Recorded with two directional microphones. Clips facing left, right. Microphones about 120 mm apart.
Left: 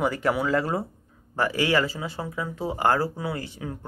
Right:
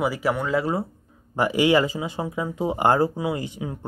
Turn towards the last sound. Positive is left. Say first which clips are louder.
# right 3 dB
turn(degrees=-15)  # may be behind; listen again after turning